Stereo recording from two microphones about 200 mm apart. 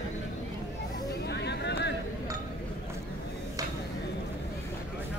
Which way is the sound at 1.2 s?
60° left (ahead or behind).